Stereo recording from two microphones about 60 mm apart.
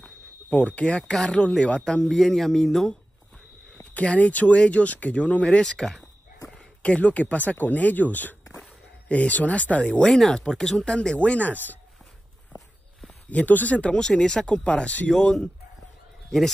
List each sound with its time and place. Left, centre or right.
0.0 s speech: left
3.7 s speech: left
6.5 s speech: left
13.3 s speech: left
16.3 s speech: centre